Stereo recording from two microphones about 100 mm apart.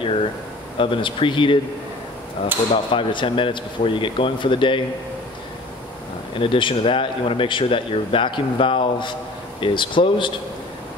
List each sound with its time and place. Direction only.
0.0 s a sound: 65° left (ahead or behind)
0.7 s speech: 60° left (ahead or behind)
6.3 s speech: 60° left (ahead or behind)